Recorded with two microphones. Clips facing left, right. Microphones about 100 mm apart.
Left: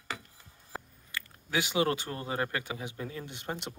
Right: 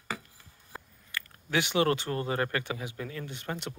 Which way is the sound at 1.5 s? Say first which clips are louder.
Right 2 dB; 15° left (ahead or behind).